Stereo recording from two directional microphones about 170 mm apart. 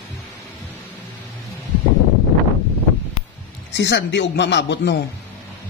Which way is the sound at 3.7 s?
90° left.